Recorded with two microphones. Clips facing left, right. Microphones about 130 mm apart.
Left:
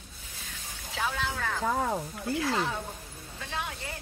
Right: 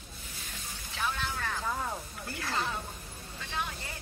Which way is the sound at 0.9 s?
90° left.